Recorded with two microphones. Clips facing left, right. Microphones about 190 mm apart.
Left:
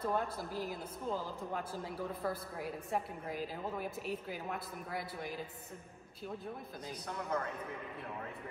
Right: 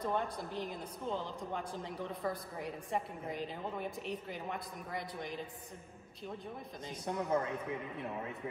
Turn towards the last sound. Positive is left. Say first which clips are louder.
# right 4 dB
turn(degrees=-20)  # may be behind; listen again after turning